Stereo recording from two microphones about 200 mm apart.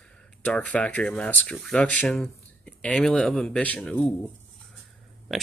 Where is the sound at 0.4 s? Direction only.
5° left (ahead or behind).